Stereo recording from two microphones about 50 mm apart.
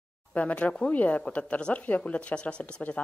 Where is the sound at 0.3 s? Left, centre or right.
Left.